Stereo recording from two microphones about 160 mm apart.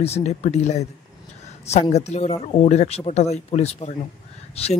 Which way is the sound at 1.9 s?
45° left (ahead or behind).